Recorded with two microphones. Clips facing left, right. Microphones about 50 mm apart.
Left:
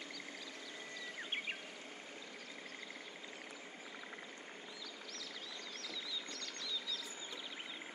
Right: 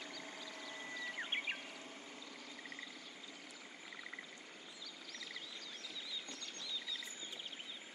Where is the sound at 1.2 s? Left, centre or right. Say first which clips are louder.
Right 1 dB; centre.